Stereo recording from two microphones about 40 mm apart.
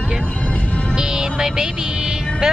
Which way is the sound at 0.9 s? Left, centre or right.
Centre.